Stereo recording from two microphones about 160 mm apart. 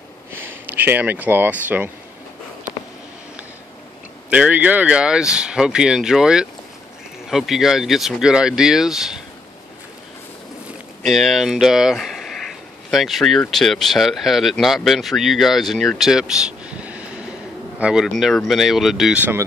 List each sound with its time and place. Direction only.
0.3 s speech: 15° right (ahead or behind)
4.3 s speech: 10° right (ahead or behind)
11.0 s speech: centre (ahead or behind)